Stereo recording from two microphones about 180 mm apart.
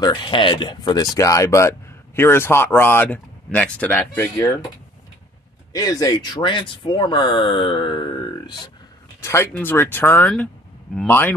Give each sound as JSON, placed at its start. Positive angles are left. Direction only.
{"t": 0.0, "sound": "speech", "side_deg": 25}
{"t": 5.7, "sound": "speech", "side_deg": 20}
{"t": 9.2, "sound": "speech", "side_deg": 15}